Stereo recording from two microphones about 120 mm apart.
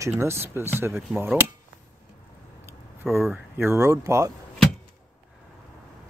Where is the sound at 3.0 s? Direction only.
20° right (ahead or behind).